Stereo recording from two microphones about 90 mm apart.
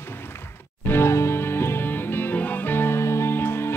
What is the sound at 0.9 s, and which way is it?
Music, 30° left (ahead or behind).